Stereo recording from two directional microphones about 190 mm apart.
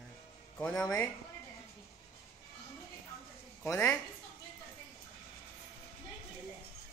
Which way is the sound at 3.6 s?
10° left (ahead or behind).